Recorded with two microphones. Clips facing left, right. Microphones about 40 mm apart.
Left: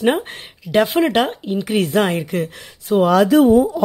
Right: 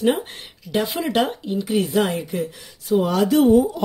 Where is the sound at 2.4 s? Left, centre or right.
Left.